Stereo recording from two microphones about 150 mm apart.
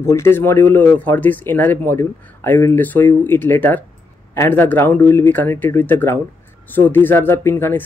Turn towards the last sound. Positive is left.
turn(degrees=15)  # may be behind; listen again after turning